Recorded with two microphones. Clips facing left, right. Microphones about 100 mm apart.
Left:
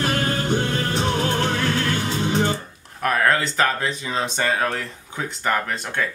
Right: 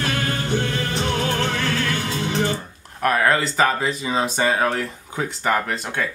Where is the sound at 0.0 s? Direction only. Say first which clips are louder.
Left 2 dB; 35° left (ahead or behind).